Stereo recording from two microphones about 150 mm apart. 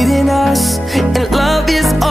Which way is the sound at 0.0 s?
Centre (ahead or behind).